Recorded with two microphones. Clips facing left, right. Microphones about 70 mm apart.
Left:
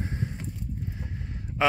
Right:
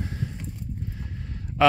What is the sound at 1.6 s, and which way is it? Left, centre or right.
Speech, centre.